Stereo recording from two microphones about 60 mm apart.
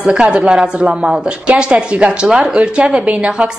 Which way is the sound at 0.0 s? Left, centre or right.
Centre.